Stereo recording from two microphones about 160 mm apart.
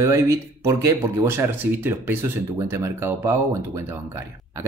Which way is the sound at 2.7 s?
15° right (ahead or behind).